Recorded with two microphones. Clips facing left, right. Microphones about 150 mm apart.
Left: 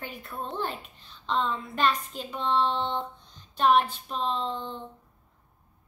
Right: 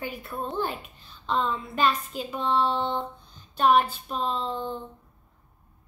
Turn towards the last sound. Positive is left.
turn(degrees=-5)  # may be behind; listen again after turning